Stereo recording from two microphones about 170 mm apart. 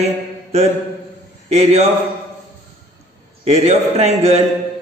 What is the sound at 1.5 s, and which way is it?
Speech, 40° right (ahead or behind).